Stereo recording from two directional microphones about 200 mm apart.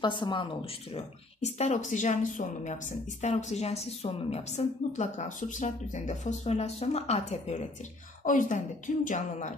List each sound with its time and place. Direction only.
0.0 s a woman's voice: 25° left (ahead or behind)
0.9 s speech: 35° left (ahead or behind)